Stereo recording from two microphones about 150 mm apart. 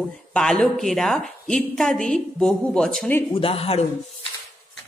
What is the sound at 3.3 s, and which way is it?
Speech, 40° left (ahead or behind).